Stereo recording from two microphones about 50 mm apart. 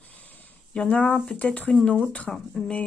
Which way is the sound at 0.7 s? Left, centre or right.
Left.